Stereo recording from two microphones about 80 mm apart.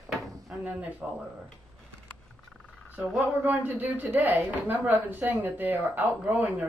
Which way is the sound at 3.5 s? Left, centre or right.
Right.